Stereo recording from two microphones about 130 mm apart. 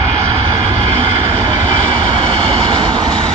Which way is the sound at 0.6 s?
50° right (ahead or behind).